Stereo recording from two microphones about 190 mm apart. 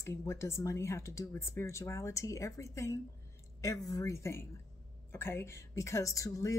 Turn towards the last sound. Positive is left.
turn(degrees=15)  # may be behind; listen again after turning